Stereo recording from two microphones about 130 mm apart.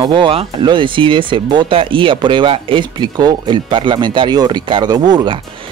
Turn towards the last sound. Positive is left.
turn(degrees=-35)  # may be behind; listen again after turning